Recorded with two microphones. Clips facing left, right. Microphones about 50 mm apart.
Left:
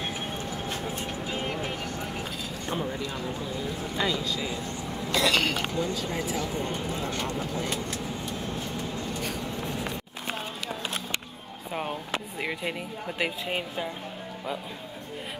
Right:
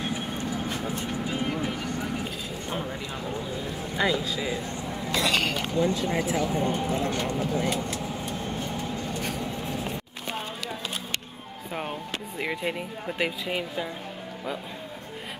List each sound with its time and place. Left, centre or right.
3.9 s speech: centre
5.2 s speech: centre
12.4 s speech: centre
13.5 s speech: centre